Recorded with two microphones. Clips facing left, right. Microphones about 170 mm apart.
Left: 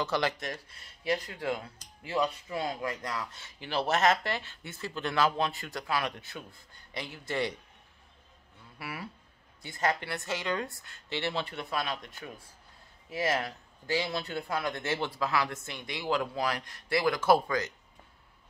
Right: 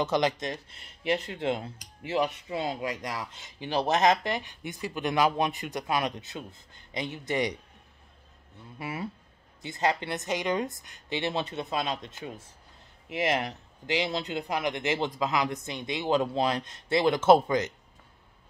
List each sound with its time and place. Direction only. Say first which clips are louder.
0.0 s a man's voice: right 4 dB; 20° right (ahead or behind)
8.7 s a man's voice: right 6 dB; 20° right (ahead or behind)